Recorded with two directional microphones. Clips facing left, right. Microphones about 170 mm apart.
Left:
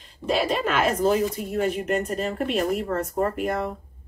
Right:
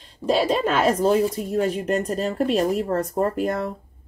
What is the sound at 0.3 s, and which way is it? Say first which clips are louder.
Speech: right 3 dB; 35° right (ahead or behind).